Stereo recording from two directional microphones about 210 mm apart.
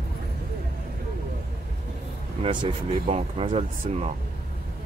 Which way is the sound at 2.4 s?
25° right (ahead or behind).